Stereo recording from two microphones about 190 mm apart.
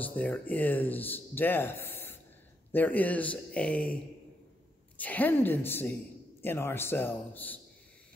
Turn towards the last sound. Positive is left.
turn(degrees=10)  # may be behind; listen again after turning